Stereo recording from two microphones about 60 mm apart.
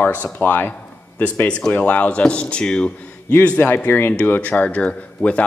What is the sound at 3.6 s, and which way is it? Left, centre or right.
Speech, left.